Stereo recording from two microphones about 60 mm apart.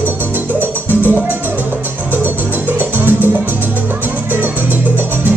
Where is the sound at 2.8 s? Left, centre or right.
Right.